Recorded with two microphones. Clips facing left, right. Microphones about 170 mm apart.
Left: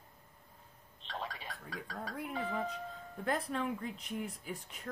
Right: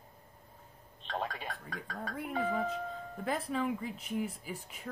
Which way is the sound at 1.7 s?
50° right (ahead or behind).